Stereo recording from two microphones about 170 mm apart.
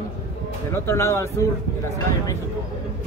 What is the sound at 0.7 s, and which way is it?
Speech, 15° left (ahead or behind).